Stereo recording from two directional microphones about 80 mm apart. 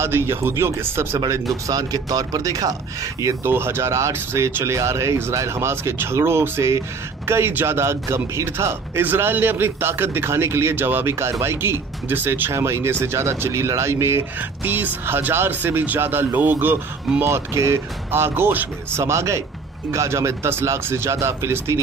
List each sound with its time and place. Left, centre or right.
0.0 s speech: right
1.7 s speech: right
3.4 s speech: right
9.0 s a man's voice: right
18.9 s speech: right